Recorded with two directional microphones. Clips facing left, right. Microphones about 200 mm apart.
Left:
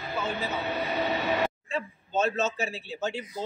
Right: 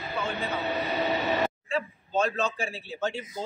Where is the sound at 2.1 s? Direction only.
5° left (ahead or behind).